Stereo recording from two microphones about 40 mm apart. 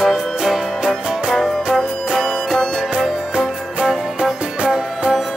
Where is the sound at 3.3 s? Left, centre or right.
Right.